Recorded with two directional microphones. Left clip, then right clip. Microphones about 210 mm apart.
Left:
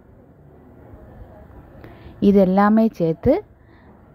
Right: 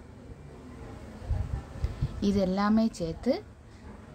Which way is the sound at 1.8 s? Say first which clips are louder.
Left 12 dB; 35° left (ahead or behind).